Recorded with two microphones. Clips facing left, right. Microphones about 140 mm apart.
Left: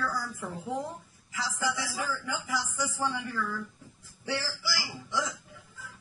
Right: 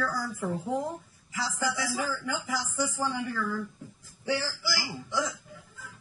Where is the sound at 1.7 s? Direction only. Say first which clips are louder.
Right 3 dB; 15° right (ahead or behind).